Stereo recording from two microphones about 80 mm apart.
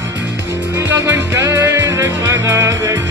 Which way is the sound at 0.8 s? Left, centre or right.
Right.